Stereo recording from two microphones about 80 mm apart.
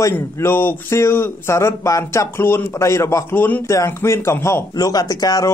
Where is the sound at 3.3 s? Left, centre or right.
Left.